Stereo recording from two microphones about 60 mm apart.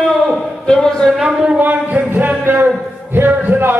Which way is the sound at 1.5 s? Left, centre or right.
Right.